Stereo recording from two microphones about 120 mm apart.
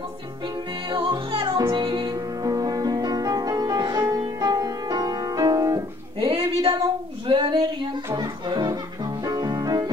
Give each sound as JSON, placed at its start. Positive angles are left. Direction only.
{"t": 0.8, "sound": "music", "side_deg": -45}
{"t": 2.1, "sound": "music", "side_deg": -30}
{"t": 6.1, "sound": "music", "side_deg": -45}
{"t": 7.2, "sound": "female singing", "side_deg": -40}
{"t": 8.1, "sound": "music", "side_deg": -35}